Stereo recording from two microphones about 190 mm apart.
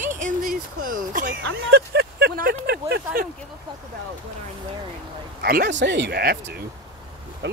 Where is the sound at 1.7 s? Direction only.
55° right (ahead or behind).